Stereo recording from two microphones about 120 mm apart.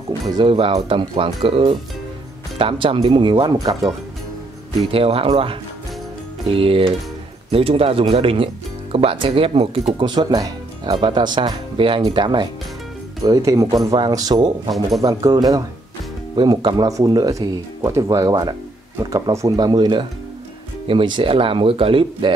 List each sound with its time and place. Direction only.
0.4 s speech: 45° right (ahead or behind)
3.5 s speech: 30° right (ahead or behind)
4.9 s speech: 50° right (ahead or behind)
9.9 s speech: 40° right (ahead or behind)
13.2 s speech: 30° right (ahead or behind); by 22.3 s 50° right (ahead or behind)